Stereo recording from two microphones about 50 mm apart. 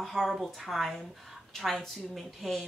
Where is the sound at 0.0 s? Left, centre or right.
Centre.